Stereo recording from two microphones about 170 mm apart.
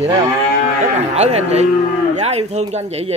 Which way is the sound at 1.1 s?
40° right (ahead or behind).